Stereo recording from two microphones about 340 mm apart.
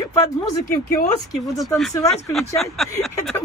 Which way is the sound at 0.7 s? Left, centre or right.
Left.